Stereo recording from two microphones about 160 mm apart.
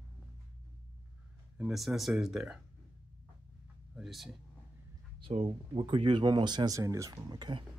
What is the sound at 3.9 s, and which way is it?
Speech, centre (ahead or behind).